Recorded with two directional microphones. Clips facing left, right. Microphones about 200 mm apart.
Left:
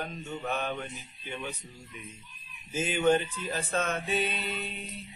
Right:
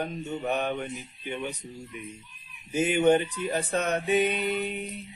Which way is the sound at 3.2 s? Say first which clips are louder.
Right 6 dB; 65° right (ahead or behind).